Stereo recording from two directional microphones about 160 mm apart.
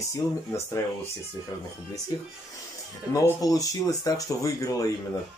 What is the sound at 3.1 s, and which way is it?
Speech, 20° left (ahead or behind).